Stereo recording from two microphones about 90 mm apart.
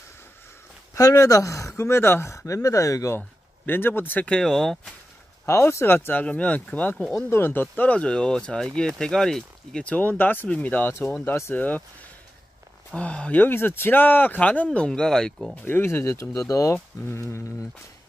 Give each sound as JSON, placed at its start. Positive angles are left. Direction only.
{"t": 0.9, "sound": "speech", "side_deg": 35}
{"t": 3.2, "sound": "speech", "side_deg": 25}
{"t": 4.4, "sound": "speech", "side_deg": 5}
{"t": 5.5, "sound": "speech", "side_deg": 30}
{"t": 7.0, "sound": "speech", "side_deg": 10}
{"t": 7.2, "sound": "speech", "side_deg": 25}
{"t": 7.6, "sound": "speech", "side_deg": 15}
{"t": 11.5, "sound": "speech", "side_deg": 15}
{"t": 12.9, "sound": "speech", "side_deg": 10}
{"t": 15.5, "sound": "speech", "side_deg": 20}